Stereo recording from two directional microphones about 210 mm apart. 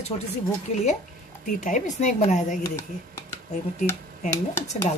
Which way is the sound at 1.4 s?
35° left (ahead or behind).